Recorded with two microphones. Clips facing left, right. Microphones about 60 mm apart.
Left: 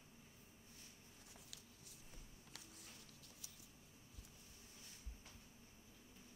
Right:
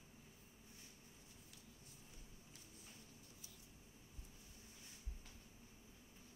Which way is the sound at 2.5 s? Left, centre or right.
Left.